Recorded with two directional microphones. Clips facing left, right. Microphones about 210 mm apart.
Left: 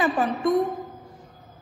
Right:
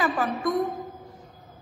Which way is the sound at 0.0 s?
25° left (ahead or behind).